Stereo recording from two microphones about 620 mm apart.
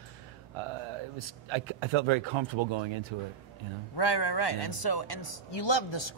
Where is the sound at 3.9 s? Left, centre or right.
Left.